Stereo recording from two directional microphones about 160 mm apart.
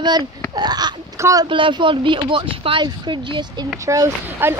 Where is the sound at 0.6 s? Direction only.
25° right (ahead or behind).